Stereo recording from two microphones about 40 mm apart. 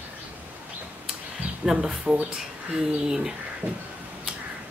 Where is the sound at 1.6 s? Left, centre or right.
Centre.